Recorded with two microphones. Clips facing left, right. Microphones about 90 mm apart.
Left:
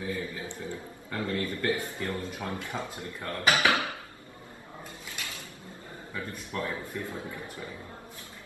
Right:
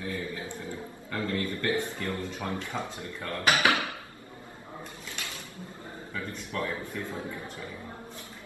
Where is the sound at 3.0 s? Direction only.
25° left (ahead or behind).